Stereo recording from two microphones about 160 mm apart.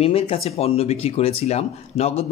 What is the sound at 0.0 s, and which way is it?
Speech, 40° left (ahead or behind).